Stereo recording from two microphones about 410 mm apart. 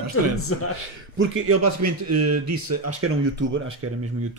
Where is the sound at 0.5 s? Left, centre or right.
Left.